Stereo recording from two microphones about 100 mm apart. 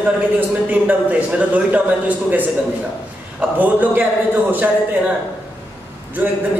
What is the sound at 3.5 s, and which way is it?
A man's voice, 15° right (ahead or behind).